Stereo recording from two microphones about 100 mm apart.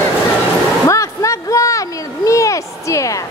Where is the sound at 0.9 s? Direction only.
30° left (ahead or behind).